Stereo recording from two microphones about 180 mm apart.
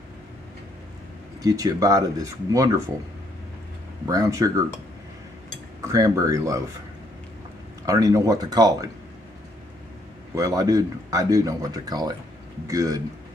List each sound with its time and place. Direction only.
1.4 s speech: 20° right (ahead or behind)
4.1 s speech: 20° right (ahead or behind)
5.9 s speech: 20° right (ahead or behind)
7.8 s speech: 20° right (ahead or behind)
10.3 s speech: 20° right (ahead or behind)